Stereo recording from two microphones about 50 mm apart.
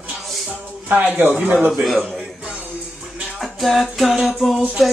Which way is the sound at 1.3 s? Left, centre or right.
Right.